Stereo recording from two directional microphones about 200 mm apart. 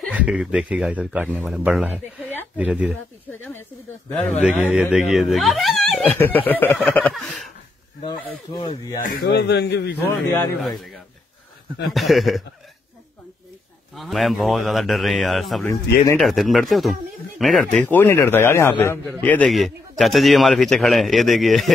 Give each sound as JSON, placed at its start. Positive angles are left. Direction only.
{"t": 0.1, "sound": "a man's voice", "side_deg": -5}
{"t": 4.5, "sound": "a man's voice", "side_deg": -5}
{"t": 8.5, "sound": "speech", "side_deg": 20}
{"t": 9.0, "sound": "a man's voice", "side_deg": 50}
{"t": 11.8, "sound": "a man's voice", "side_deg": 0}
{"t": 13.9, "sound": "a man's voice", "side_deg": 0}
{"t": 15.6, "sound": "a man's voice", "side_deg": 15}
{"t": 16.2, "sound": "a man's voice", "side_deg": 0}